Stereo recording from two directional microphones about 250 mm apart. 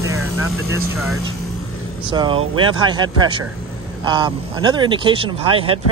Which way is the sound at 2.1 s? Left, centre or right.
Centre.